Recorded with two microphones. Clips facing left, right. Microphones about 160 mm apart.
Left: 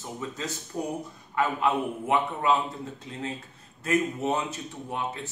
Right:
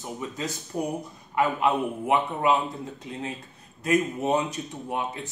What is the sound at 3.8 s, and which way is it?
Speech, 15° right (ahead or behind).